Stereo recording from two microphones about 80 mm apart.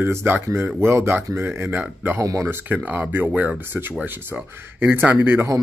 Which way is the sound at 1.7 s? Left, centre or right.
Right.